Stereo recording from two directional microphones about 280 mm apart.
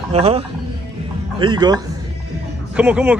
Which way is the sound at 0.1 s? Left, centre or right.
Right.